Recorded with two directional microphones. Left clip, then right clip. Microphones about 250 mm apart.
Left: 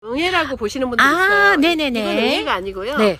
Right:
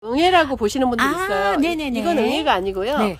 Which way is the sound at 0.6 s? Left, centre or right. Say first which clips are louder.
Right 2 dB; right.